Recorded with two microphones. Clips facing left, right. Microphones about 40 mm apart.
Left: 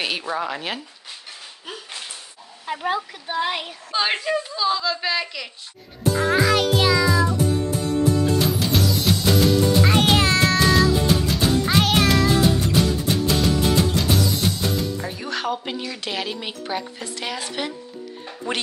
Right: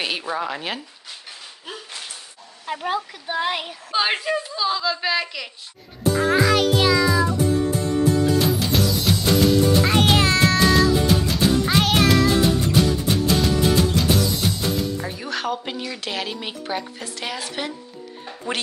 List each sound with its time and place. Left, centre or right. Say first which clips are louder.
0.0 s a woman's voice: even; centre
2.6 s a woman's voice: left 1 dB; centre
8.4 s music: right 1 dB; centre